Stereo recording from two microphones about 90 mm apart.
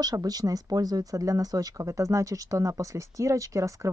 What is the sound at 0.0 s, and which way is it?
Speech, 45° right (ahead or behind).